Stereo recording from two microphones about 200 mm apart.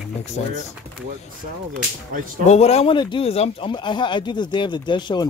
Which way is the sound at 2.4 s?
30° left (ahead or behind).